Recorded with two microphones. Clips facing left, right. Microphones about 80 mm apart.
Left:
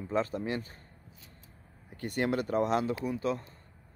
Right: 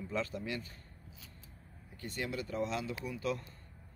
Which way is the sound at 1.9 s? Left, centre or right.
Left.